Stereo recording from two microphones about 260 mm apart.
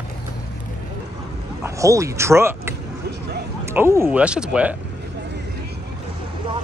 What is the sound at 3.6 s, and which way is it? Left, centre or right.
Speech, centre.